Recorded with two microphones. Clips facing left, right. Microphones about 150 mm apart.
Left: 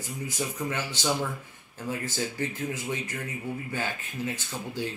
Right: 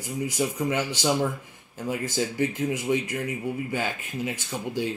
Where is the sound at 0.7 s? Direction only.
15° right (ahead or behind).